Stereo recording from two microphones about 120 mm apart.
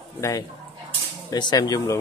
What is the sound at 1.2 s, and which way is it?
Speech, 35° left (ahead or behind).